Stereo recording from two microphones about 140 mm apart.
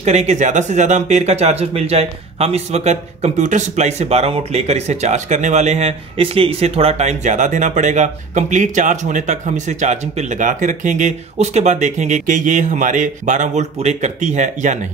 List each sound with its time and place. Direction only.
0.0 s speech: 55° right (ahead or behind)